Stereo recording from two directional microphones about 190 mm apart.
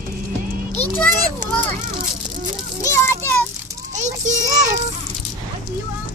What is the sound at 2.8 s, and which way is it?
Speech, 15° left (ahead or behind).